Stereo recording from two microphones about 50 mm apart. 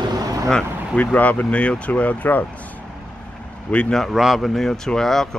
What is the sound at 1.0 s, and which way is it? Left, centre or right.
Speech, left.